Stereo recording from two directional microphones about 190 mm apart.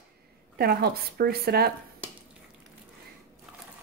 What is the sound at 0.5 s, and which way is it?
A woman's voice, 55° right (ahead or behind).